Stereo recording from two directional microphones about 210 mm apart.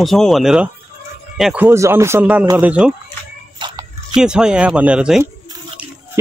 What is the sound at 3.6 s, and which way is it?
Dog, 20° right (ahead or behind).